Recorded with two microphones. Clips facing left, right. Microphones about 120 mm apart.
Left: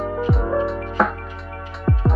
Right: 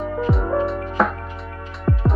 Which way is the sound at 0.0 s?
Centre (ahead or behind).